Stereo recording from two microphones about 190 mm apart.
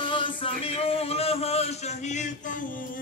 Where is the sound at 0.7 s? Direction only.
30° left (ahead or behind).